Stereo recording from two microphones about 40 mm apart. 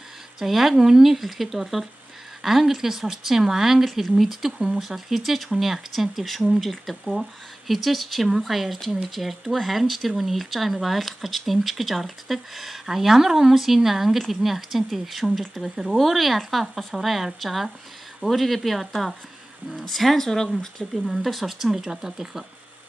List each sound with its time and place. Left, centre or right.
0.4 s speech: centre
4.6 s speech: centre
4.8 s speech: centre
20.9 s speech: centre